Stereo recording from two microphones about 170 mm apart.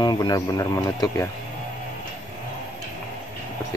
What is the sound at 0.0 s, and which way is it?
A man's voice, 25° left (ahead or behind).